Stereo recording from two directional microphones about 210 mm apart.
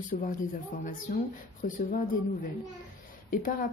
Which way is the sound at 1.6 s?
40° left (ahead or behind).